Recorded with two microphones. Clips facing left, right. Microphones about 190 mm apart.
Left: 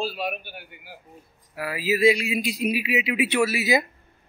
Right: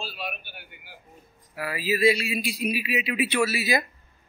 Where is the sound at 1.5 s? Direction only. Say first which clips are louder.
Left 2 dB; 10° left (ahead or behind).